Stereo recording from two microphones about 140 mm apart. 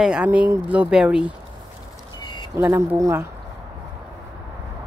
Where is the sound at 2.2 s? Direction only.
35° left (ahead or behind).